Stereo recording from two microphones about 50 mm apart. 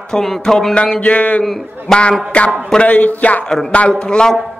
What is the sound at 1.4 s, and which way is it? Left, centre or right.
Speech, centre.